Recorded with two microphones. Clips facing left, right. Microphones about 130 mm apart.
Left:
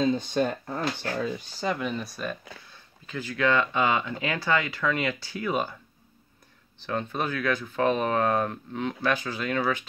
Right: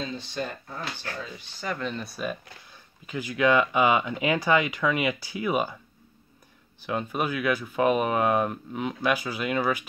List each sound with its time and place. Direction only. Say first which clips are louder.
0.0 s speech: left 8 dB; 50° left (ahead or behind)
1.8 s speech: left 1 dB; 5° left (ahead or behind); by 5.8 s 10° right (ahead or behind)
6.8 s speech: right 1 dB; 10° right (ahead or behind)